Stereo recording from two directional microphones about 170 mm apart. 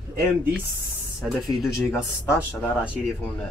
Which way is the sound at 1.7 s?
15° left (ahead or behind).